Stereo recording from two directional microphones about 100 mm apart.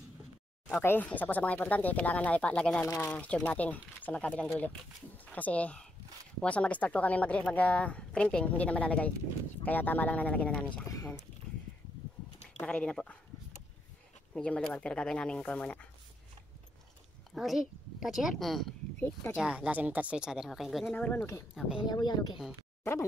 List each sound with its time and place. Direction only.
0.7 s speech: 15° left (ahead or behind)
2.8 s speech: 25° left (ahead or behind)
3.2 s speech: 10° left (ahead or behind)
12.5 s speech: 10° left (ahead or behind)
14.3 s speech: 10° left (ahead or behind)
17.3 s a woman's voice: centre (ahead or behind)
18.9 s speech: 20° left (ahead or behind)
19.3 s speech: 10° right (ahead or behind)
20.9 s speech: 15° left (ahead or behind)
21.2 s speech: 30° left (ahead or behind)
21.5 s speech: 10° right (ahead or behind)
21.8 s speech: 45° left (ahead or behind)